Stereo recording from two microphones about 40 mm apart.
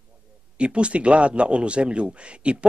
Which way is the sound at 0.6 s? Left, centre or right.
Right.